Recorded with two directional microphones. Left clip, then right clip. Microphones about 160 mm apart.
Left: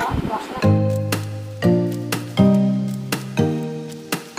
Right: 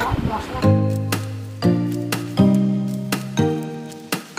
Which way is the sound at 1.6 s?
Centre (ahead or behind).